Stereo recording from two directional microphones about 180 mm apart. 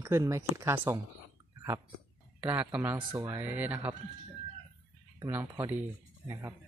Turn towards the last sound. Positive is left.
turn(degrees=-10)  # may be behind; listen again after turning